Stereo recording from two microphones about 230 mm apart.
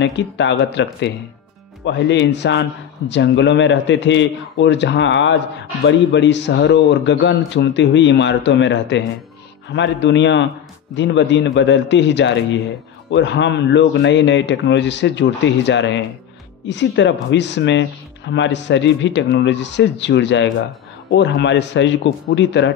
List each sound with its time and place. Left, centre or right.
0.0 s speech: left
1.9 s speech: left